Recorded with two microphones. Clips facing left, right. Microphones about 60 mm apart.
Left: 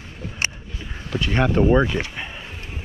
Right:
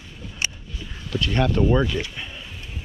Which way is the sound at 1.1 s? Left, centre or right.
Left.